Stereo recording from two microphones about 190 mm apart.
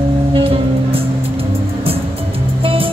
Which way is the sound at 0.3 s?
30° right (ahead or behind).